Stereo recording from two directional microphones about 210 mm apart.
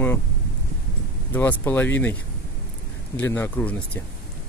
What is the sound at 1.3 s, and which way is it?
Speech, 10° left (ahead or behind).